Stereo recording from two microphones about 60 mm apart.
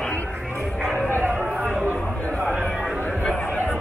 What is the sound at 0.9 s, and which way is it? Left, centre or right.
Music, left.